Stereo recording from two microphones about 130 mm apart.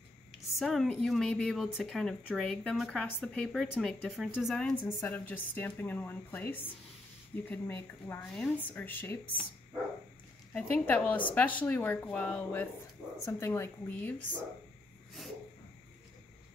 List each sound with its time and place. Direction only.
0.6 s a woman's voice: centre (ahead or behind); by 8.2 s 15° left (ahead or behind)
8.2 s speech: 5° left (ahead or behind)
10.5 s speech: 10° left (ahead or behind)